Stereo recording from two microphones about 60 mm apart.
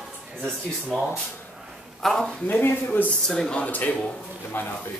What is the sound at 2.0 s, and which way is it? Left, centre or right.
Speech, centre.